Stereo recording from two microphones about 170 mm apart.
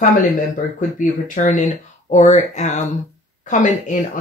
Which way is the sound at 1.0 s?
45° left (ahead or behind).